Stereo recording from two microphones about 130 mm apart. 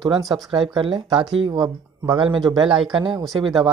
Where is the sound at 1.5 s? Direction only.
30° right (ahead or behind).